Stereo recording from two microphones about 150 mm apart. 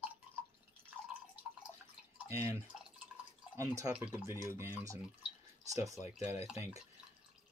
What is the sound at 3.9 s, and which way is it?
Speech, 10° right (ahead or behind).